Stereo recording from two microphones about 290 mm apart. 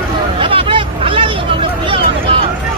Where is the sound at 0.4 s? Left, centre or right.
Centre.